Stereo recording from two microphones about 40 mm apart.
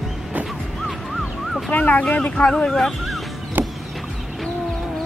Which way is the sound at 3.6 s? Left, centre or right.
Right.